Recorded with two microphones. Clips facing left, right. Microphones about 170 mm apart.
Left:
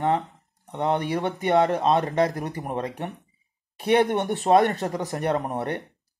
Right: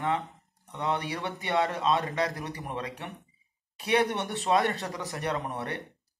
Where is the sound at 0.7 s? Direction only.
50° left (ahead or behind).